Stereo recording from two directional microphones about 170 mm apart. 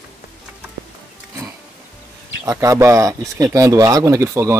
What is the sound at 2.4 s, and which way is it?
Speech, 20° right (ahead or behind).